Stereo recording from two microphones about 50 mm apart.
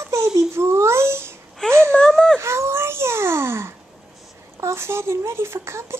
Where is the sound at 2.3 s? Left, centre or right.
Right.